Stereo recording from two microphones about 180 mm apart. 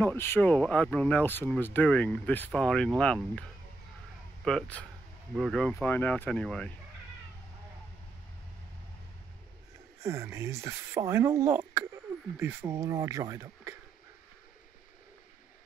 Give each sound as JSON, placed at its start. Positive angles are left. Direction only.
{"t": 0.0, "sound": "speech", "side_deg": 10}
{"t": 4.5, "sound": "speech", "side_deg": 5}
{"t": 10.0, "sound": "speech", "side_deg": -15}